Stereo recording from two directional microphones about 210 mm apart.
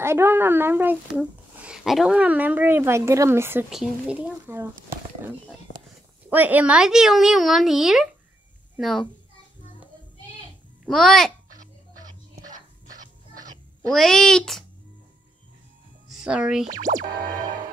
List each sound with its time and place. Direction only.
0.0 s speech: 10° right (ahead or behind)
6.3 s a woman's voice: 10° right (ahead or behind)
10.9 s a woman's voice: centre (ahead or behind)
13.8 s a woman's voice: centre (ahead or behind)
16.1 s speech: 5° right (ahead or behind)
16.6 s music: 35° right (ahead or behind)
16.9 s speech: 20° right (ahead or behind)